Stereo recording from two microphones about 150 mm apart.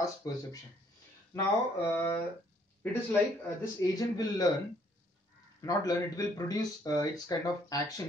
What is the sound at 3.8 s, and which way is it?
Speech, 25° left (ahead or behind).